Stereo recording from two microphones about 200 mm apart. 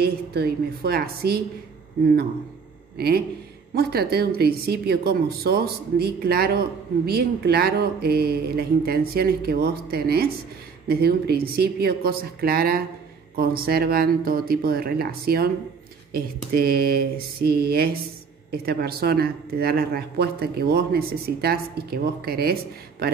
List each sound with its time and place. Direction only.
0.0 s speech: 55° right (ahead or behind)
3.7 s speech: 50° right (ahead or behind)